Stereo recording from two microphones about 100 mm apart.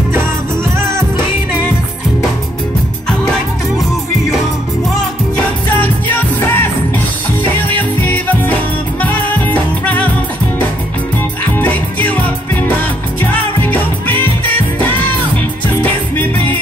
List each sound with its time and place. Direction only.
5.3 s music: 15° left (ahead or behind)
11.5 s music: 15° left (ahead or behind)
13.2 s music: 20° left (ahead or behind)